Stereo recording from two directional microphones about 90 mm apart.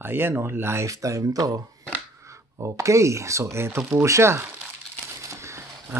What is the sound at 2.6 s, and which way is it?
Speech, 35° right (ahead or behind).